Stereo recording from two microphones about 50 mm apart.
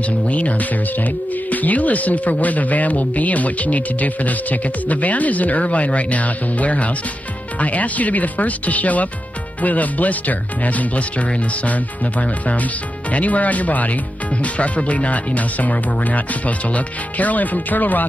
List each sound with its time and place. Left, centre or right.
0.3 s speech: left